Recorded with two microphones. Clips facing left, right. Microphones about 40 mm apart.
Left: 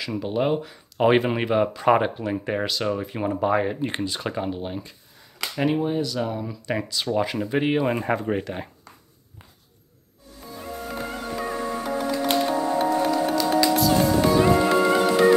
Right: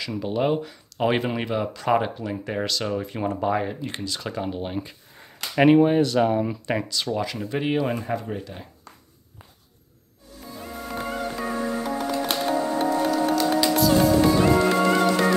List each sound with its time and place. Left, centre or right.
0.0 s speech: centre
3.8 s speech: left
4.6 s speech: centre
5.9 s speech: right
6.2 s speech: right
6.7 s speech: centre
7.2 s speech: centre
8.0 s speech: left
11.3 s music: centre
14.4 s music: centre